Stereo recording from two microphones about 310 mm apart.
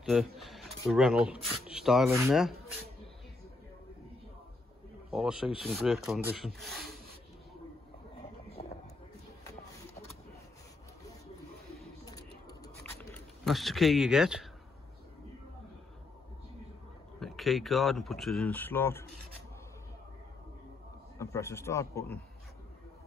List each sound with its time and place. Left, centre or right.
0.0 s speech: centre
5.1 s speech: centre
8.6 s vehicle: left
12.0 s a sound: centre
13.1 s speech: centre
17.2 s speech: centre
21.2 s a man's voice: centre